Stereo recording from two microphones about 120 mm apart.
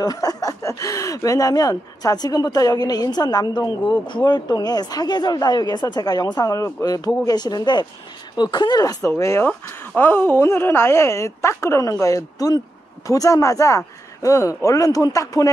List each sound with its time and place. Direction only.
0.0 s a woman's voice: 30° left (ahead or behind)